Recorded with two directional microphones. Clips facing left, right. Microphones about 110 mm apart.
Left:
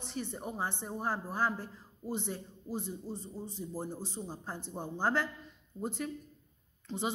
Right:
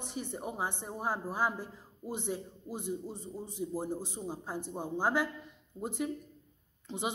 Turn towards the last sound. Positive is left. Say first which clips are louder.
# left 1 dB
turn(degrees=-15)  # may be behind; listen again after turning